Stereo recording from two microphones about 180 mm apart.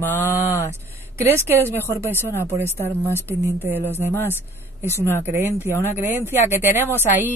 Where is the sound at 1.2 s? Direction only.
15° right (ahead or behind).